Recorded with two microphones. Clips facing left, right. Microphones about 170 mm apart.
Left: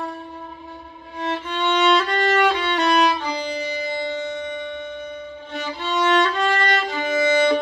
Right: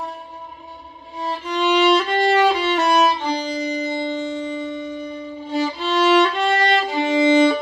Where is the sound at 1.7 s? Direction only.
10° right (ahead or behind).